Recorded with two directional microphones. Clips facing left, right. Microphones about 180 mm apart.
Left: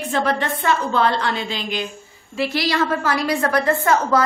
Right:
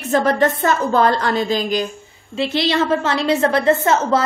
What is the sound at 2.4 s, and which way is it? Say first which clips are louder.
A woman's voice: right 2 dB; 25° right (ahead or behind).